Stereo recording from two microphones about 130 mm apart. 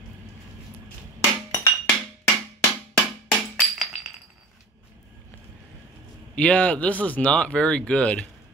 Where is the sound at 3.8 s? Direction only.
5° right (ahead or behind).